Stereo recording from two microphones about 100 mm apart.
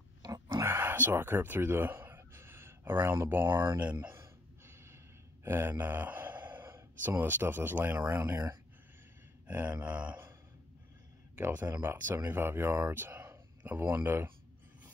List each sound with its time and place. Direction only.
0.2 s dog: 40° right (ahead or behind)
0.7 s a sound: 20° right (ahead or behind)
3.8 s speech: 15° right (ahead or behind)
4.2 s a sound: 25° right (ahead or behind)
5.4 s speech: 20° right (ahead or behind)
9.5 s speech: 15° right (ahead or behind)
11.3 s speech: 20° right (ahead or behind)